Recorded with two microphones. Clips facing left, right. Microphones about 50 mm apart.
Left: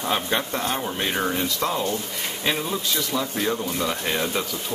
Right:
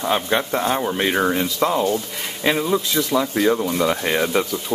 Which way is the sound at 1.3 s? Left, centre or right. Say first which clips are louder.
Right 5 dB; right.